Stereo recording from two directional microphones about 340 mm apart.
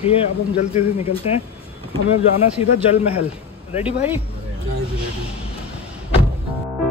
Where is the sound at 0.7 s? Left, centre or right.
Centre.